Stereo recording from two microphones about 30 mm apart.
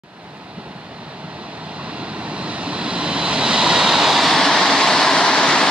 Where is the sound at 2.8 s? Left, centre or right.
Right; by 4.2 s centre.